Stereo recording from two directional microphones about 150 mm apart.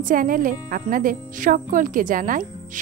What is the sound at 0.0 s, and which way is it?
Music, 65° right (ahead or behind).